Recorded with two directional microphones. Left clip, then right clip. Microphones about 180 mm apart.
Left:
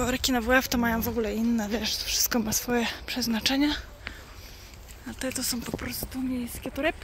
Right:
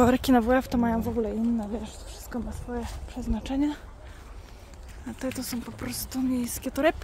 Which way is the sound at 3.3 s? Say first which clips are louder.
Left 3 dB; 5° right (ahead or behind).